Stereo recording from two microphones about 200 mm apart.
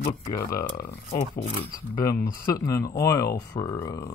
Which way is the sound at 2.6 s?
15° left (ahead or behind).